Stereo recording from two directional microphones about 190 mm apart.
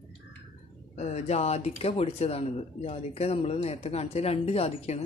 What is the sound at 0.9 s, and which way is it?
Speech, 35° left (ahead or behind).